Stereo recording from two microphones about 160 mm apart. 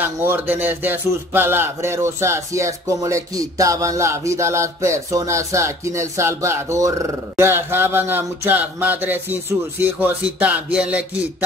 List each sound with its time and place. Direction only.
0.0 s speech: 15° right (ahead or behind)